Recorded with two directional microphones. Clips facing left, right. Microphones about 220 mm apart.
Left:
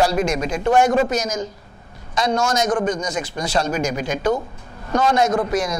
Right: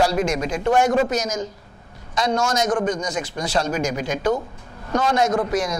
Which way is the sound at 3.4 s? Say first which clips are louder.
Left 1 dB; 10° left (ahead or behind).